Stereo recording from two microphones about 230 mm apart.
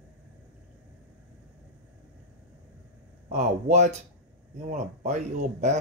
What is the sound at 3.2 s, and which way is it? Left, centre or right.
Speech, right.